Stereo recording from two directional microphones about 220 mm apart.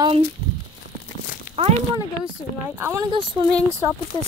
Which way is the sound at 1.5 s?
25° right (ahead or behind).